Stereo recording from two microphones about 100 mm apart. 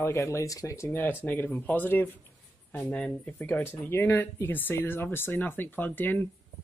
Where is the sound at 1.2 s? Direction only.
15° left (ahead or behind).